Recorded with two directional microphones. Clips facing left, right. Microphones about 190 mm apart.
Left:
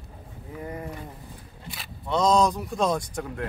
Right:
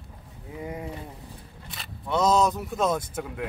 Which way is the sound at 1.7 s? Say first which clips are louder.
Left 1 dB; centre (ahead or behind).